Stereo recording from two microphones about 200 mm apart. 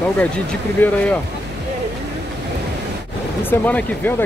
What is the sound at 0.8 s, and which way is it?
Speech, 10° left (ahead or behind).